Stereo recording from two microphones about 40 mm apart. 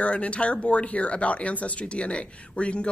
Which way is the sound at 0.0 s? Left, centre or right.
Left.